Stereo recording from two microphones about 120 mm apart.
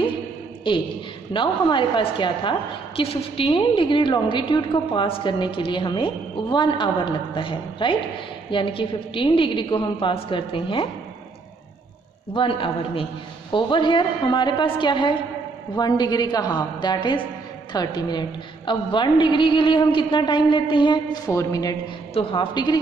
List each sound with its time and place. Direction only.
0.7 s a woman's voice: 45° left (ahead or behind)
12.4 s a woman's voice: 45° left (ahead or behind)
21.3 s a man's voice: 30° left (ahead or behind)
22.1 s a man's voice: 45° left (ahead or behind)